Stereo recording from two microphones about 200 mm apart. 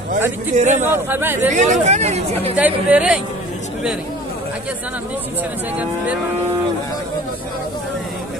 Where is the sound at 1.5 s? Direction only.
35° right (ahead or behind).